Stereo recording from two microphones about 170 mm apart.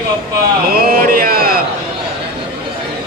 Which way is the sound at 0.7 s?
60° right (ahead or behind).